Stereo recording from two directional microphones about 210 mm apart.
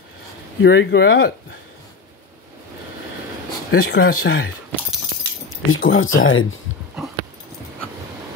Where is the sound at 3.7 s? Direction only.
50° left (ahead or behind).